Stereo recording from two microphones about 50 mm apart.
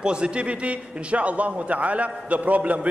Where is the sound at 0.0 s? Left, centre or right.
Centre.